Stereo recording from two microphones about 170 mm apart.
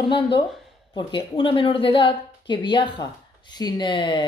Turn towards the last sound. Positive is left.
turn(degrees=30)  # may be behind; listen again after turning